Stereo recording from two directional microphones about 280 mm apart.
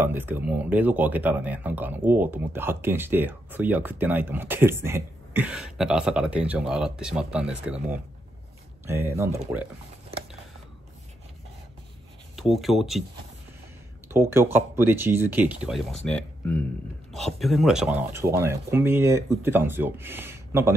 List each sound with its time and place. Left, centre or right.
0.0 s speech: centre
12.4 s speech: centre
14.0 s speech: centre